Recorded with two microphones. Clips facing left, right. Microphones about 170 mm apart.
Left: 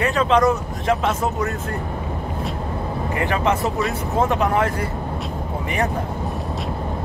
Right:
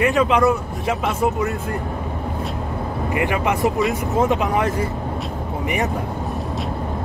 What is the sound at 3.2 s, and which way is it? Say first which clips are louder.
Speech: right 1 dB; 15° right (ahead or behind).